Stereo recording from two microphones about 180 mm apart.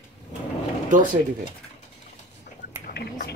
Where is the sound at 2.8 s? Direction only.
60° left (ahead or behind).